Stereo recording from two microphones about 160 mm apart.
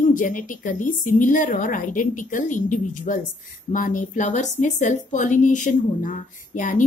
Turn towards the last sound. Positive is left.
turn(degrees=55)  # may be behind; listen again after turning